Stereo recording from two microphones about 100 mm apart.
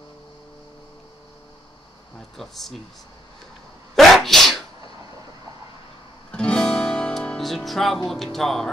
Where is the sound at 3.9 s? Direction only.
Centre (ahead or behind).